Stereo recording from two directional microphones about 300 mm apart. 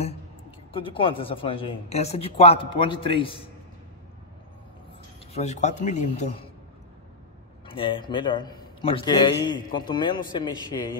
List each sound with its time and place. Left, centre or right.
0.7 s a man's voice: centre
5.3 s speech: left
7.6 s a man's voice: centre